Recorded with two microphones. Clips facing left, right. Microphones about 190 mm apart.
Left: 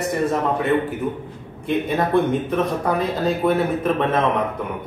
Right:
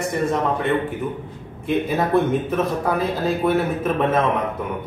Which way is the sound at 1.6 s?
Centre (ahead or behind).